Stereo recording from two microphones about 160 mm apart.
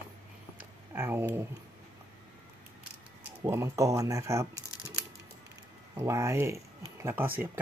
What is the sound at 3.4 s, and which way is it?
Speech, 20° right (ahead or behind).